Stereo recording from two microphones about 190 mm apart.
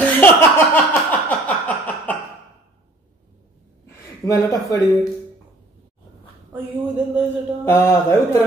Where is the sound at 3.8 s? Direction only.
15° left (ahead or behind).